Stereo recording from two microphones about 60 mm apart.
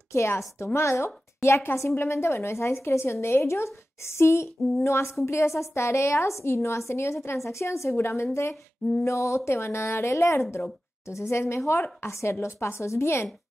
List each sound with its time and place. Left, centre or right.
0.1 s a woman's voice: left